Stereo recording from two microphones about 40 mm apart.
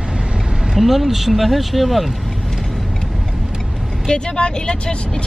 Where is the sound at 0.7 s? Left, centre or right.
Centre.